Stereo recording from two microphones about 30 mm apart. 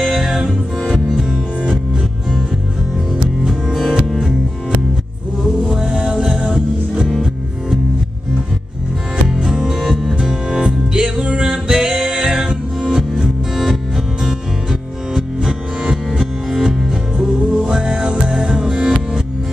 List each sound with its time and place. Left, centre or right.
0.0 s music: centre
4.0 s music: centre
5.9 s music: right
9.5 s music: centre
10.2 s music: right
13.2 s music: centre
14.7 s music: right